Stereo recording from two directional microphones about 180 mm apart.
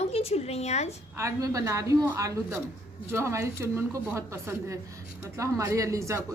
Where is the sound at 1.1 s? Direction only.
15° right (ahead or behind).